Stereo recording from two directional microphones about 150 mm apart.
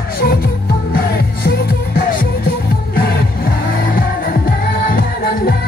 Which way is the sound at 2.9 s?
85° left.